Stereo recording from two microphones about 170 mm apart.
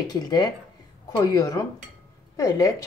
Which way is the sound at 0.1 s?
25° left (ahead or behind).